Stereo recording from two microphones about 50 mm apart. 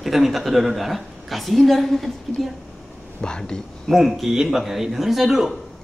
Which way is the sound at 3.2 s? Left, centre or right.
Centre.